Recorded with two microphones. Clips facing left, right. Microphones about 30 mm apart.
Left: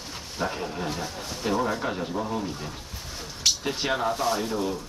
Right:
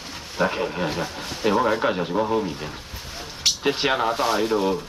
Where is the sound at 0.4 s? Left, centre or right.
Right.